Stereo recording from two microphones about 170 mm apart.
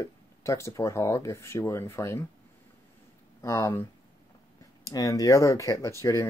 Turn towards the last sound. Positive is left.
turn(degrees=15)  # may be behind; listen again after turning